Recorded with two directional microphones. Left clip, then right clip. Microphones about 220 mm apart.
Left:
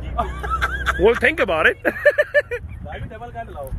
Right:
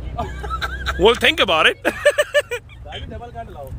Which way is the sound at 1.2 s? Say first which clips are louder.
Right 2 dB; 15° right (ahead or behind).